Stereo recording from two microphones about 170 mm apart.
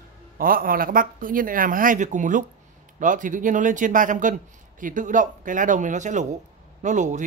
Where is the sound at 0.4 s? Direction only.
55° right (ahead or behind).